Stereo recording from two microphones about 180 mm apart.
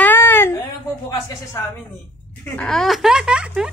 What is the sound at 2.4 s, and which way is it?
Speech, 5° left (ahead or behind).